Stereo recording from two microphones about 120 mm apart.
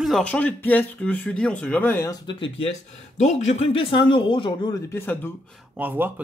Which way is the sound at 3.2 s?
75° left (ahead or behind).